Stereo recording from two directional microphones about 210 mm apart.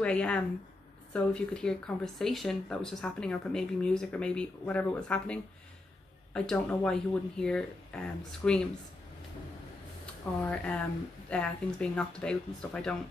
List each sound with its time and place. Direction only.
0.0 s speech: 5° left (ahead or behind)
10.4 s speech: 5° left (ahead or behind)